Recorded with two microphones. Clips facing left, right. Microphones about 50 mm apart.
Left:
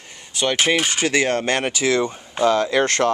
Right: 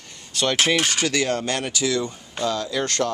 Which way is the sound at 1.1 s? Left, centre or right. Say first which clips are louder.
Left 4 dB; left.